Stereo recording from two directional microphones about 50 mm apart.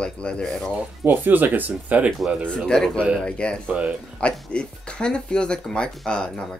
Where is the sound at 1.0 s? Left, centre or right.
Right.